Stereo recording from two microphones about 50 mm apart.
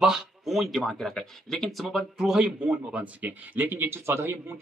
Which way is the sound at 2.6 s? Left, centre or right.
Right.